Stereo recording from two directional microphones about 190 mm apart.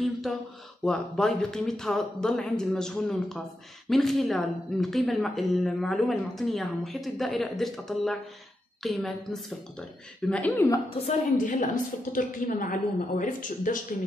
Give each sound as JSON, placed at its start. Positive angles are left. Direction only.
{"t": 0.0, "sound": "a sound", "side_deg": 0}
{"t": 0.8, "sound": "speech", "side_deg": 5}
{"t": 10.9, "sound": "a woman's voice", "side_deg": 40}